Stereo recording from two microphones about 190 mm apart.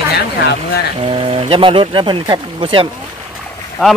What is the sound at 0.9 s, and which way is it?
Speech, 30° right (ahead or behind).